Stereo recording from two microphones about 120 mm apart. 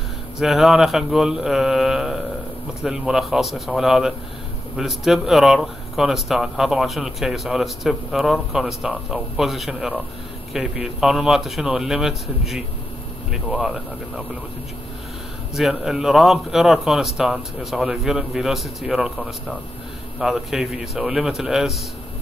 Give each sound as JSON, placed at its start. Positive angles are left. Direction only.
{"t": 0.4, "sound": "speech", "side_deg": -5}
{"t": 15.5, "sound": "speech", "side_deg": -5}